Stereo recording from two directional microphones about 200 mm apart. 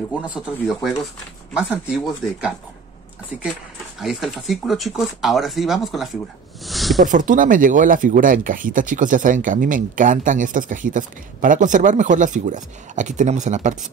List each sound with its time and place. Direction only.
0.2 s speech: 5° right (ahead or behind)
4.0 s speech: centre (ahead or behind)
6.6 s a sound: centre (ahead or behind)
7.1 s speech: 40° right (ahead or behind)